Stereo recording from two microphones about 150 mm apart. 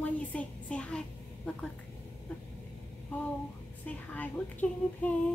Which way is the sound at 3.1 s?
10° left (ahead or behind).